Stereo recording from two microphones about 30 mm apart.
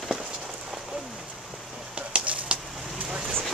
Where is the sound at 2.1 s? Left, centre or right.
Right.